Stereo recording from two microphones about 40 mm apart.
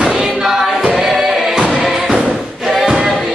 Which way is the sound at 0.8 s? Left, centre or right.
Centre.